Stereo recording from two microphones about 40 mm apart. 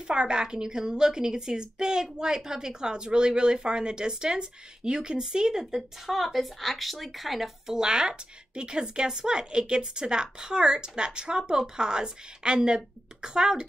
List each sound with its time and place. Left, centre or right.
0.0 s a woman's voice: right
6.0 s speech: centre
7.7 s speech: centre